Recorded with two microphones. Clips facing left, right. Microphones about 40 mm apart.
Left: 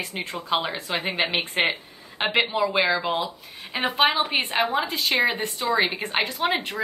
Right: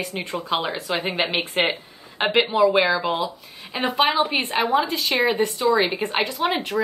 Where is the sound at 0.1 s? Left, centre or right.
Centre.